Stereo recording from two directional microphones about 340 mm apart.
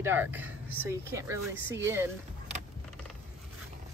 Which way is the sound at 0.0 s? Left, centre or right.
Centre.